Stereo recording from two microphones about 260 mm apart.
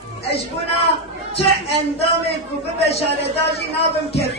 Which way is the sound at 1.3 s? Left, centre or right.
Left.